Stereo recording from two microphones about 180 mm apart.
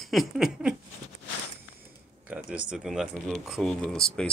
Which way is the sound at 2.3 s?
5° right (ahead or behind).